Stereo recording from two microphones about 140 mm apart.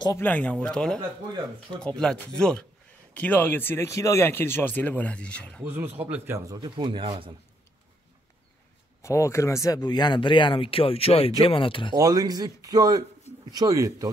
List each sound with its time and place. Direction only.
0.2 s speech: 10° left (ahead or behind)
0.9 s speech: 35° right (ahead or behind)
1.8 s speech: 5° left (ahead or behind)
6.0 s speech: 15° right (ahead or behind)
6.6 s speech: 35° right (ahead or behind)
9.0 s speech: 20° left (ahead or behind); by 11.9 s 40° left (ahead or behind)
11.9 s speech: 25° right (ahead or behind)